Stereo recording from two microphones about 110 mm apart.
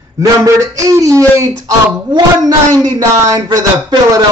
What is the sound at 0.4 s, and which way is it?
Speech, 30° right (ahead or behind).